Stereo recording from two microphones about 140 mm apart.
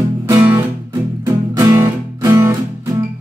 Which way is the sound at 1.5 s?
25° right (ahead or behind).